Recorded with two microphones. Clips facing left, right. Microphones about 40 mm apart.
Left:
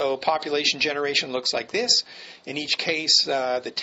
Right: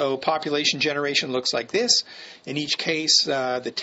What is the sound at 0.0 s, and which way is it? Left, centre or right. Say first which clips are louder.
Speech: even; centre.